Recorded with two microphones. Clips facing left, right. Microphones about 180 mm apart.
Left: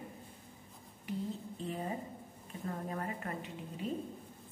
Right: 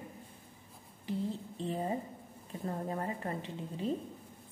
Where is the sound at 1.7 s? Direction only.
30° right (ahead or behind).